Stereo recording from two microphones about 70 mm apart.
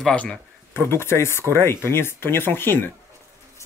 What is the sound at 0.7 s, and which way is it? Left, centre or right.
Speech, left.